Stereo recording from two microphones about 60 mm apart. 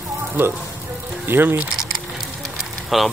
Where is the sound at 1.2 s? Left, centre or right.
Right.